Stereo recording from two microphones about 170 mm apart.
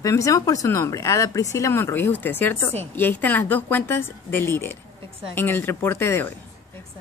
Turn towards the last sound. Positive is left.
turn(degrees=15)  # may be behind; listen again after turning